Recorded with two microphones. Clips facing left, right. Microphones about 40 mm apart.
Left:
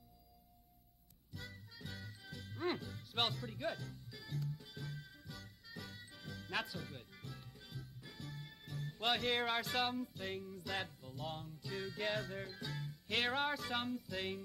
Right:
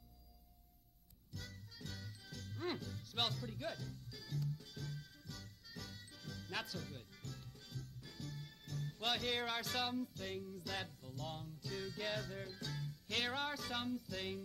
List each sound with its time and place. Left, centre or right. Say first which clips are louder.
1.3 s music: left 2 dB; centre